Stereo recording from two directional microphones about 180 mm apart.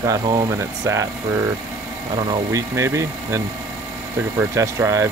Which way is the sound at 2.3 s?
15° right (ahead or behind).